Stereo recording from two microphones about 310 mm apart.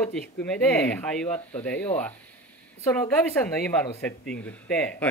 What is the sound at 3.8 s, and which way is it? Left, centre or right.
Speech, centre.